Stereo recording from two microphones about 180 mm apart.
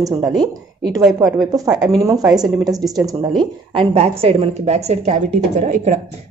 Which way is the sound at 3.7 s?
30° right (ahead or behind).